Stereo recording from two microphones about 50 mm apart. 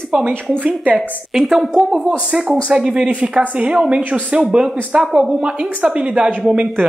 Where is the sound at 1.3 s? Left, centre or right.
Centre.